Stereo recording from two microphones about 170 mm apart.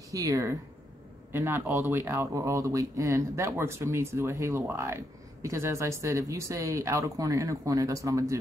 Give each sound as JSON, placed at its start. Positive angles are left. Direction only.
{"t": 0.1, "sound": "speech", "side_deg": -20}